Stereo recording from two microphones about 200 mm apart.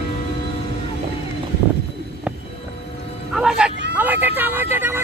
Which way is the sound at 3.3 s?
5° right (ahead or behind).